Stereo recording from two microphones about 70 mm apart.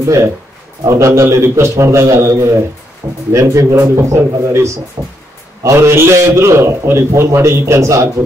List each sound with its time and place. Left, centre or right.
0.0 s a man's voice: right
3.0 s speech: right
3.3 s a man's voice: right
3.9 s a man's voice: right